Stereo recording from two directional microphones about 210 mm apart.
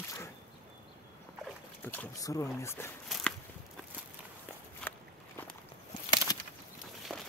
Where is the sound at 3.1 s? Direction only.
Centre (ahead or behind).